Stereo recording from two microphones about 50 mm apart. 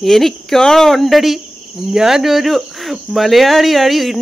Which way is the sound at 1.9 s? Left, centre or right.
Centre.